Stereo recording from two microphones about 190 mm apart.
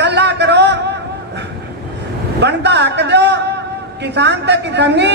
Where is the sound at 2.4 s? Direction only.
65° right (ahead or behind).